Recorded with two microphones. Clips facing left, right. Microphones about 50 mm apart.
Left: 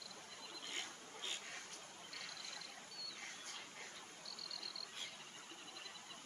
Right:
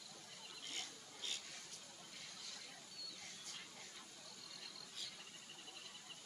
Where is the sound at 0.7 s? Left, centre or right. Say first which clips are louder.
Left 3 dB; left.